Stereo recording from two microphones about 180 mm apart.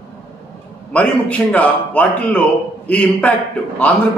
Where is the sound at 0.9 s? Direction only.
5° left (ahead or behind).